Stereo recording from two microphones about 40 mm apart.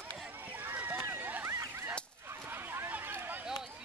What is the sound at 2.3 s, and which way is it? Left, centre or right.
Whip, right.